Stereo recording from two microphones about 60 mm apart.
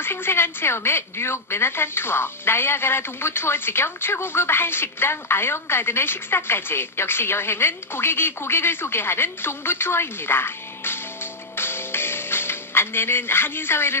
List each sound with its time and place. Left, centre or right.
0.0 s a woman's voice: left
11.5 s music: left